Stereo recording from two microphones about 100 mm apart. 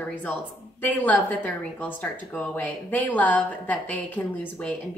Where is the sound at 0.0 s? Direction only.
15° left (ahead or behind).